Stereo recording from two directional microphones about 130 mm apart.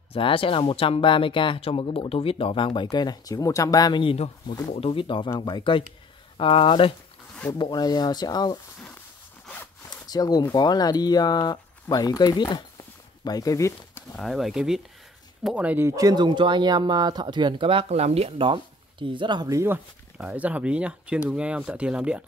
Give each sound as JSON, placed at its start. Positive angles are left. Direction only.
{"t": 0.1, "sound": "speech", "side_deg": 45}
{"t": 7.5, "sound": "speech", "side_deg": 35}
{"t": 9.8, "sound": "zipper", "side_deg": 30}
{"t": 10.5, "sound": "speech", "side_deg": 30}
{"t": 14.1, "sound": "speech", "side_deg": 0}
{"t": 16.0, "sound": "speech", "side_deg": -30}
{"t": 20.2, "sound": "speech", "side_deg": -10}